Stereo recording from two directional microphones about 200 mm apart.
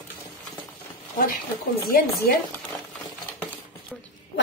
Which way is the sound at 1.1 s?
45° left (ahead or behind).